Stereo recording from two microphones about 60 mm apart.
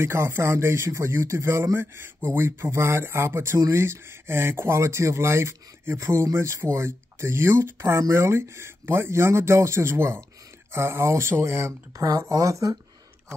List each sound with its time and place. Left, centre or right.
0.0 s speech: right
12.3 s speech: right